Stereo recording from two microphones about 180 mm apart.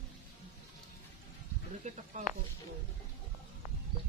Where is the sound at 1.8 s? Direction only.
40° right (ahead or behind).